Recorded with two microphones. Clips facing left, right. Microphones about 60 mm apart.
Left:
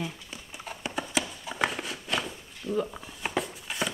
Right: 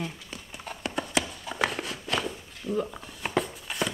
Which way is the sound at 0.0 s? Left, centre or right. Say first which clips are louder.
Even; centre.